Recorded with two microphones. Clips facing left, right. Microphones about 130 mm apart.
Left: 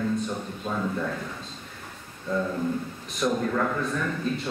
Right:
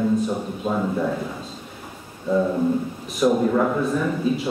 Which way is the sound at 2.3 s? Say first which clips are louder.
Right 7 dB; 20° right (ahead or behind).